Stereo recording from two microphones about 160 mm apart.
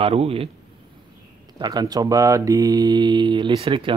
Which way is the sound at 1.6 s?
25° right (ahead or behind).